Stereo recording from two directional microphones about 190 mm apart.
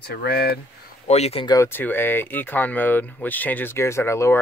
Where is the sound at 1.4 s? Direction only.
15° left (ahead or behind).